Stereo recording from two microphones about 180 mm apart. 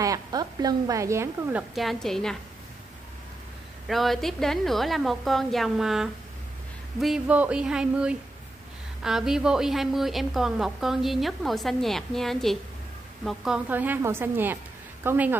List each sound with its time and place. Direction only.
0.0 s a woman's voice: 20° right (ahead or behind); by 2.3 s centre (ahead or behind)
3.8 s a woman's voice: centre (ahead or behind)